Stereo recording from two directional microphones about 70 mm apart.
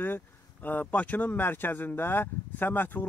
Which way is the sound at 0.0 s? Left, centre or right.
Left.